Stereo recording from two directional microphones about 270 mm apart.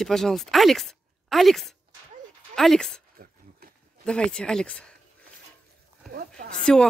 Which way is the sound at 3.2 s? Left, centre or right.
Right.